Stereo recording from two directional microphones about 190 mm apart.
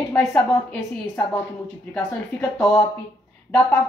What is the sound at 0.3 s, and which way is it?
Speech, 15° left (ahead or behind).